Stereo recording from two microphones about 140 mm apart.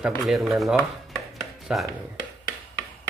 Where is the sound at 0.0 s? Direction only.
Centre (ahead or behind).